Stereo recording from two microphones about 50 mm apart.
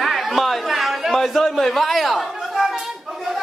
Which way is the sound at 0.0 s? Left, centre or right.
Centre.